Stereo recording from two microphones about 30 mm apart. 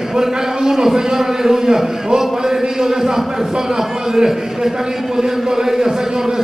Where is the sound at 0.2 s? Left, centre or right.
Centre.